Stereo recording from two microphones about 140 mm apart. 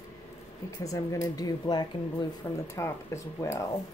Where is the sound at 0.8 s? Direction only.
25° left (ahead or behind).